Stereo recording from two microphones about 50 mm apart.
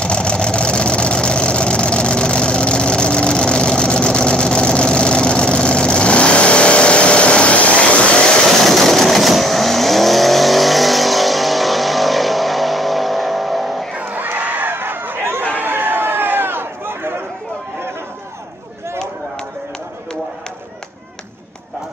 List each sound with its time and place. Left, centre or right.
0.0 s vehicle: left
8.5 s vehicle: centre
13.9 s crowd: right
14.4 s a sound: right
15.5 s chatter: right